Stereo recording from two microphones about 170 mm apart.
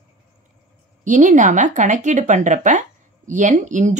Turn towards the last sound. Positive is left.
turn(degrees=-45)  # may be behind; listen again after turning